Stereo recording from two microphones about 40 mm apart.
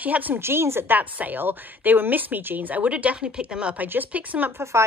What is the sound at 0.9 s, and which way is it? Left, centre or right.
A woman's voice, right.